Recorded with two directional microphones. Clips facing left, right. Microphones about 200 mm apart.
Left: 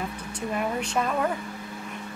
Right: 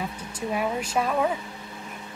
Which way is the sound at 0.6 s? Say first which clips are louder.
Right 1 dB; 5° right (ahead or behind).